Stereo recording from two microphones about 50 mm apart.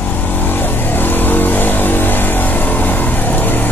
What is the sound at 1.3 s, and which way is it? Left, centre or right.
Vehicle, left.